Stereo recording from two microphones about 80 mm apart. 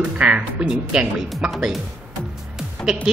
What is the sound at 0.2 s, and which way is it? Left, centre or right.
A man's voice, centre.